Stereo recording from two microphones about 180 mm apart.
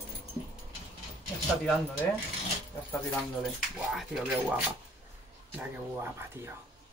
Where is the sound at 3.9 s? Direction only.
Centre (ahead or behind).